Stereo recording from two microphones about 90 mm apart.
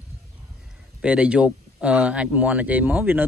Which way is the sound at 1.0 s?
10° right (ahead or behind).